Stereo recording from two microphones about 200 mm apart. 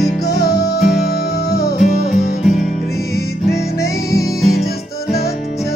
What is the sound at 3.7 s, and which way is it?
Music, 15° left (ahead or behind).